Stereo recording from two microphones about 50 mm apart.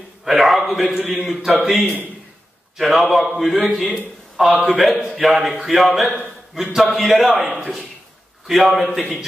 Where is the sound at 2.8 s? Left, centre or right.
Centre.